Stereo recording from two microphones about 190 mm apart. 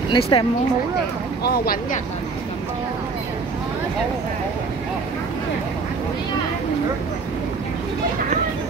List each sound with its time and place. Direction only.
0.1 s speech: 25° left (ahead or behind)
1.4 s speech: 50° left (ahead or behind)